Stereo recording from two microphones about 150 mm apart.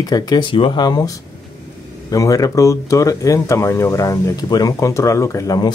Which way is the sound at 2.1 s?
20° left (ahead or behind).